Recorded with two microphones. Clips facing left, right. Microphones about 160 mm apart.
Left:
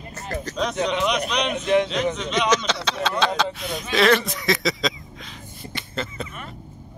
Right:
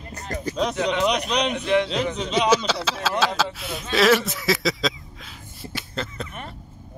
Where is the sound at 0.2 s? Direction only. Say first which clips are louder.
Right 1 dB; 15° right (ahead or behind).